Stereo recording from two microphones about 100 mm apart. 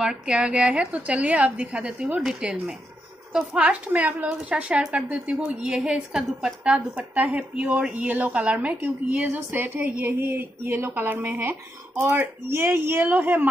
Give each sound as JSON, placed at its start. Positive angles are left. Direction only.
{"t": 0.0, "sound": "a woman's voice", "side_deg": -10}